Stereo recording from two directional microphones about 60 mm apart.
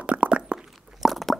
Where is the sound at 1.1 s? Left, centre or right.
Centre.